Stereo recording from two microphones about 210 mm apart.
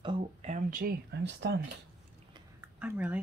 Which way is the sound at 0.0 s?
25° right (ahead or behind).